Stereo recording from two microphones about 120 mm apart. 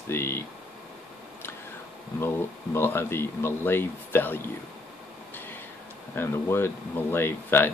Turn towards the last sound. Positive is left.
turn(degrees=15)  # may be behind; listen again after turning